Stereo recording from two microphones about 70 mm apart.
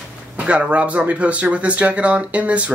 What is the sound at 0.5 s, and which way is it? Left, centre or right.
Speech, centre.